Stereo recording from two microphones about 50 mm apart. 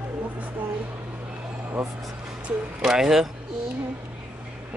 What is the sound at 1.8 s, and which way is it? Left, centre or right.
Speech, centre.